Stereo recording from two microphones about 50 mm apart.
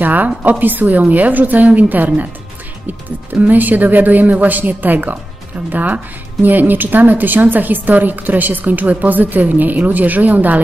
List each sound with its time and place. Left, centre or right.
0.0 s a woman's voice: right
3.3 s a woman's voice: right